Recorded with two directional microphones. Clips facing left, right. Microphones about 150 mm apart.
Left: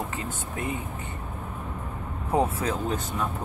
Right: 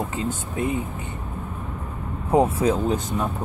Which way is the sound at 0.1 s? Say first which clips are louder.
Right 6 dB; 25° right (ahead or behind).